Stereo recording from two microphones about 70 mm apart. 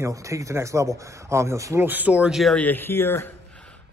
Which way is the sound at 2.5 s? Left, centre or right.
Left.